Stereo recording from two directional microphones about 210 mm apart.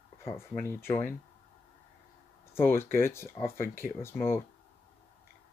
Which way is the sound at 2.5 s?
10° left (ahead or behind).